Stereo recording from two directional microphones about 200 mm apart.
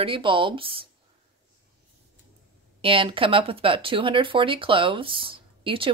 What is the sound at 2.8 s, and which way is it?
Speech, 25° right (ahead or behind).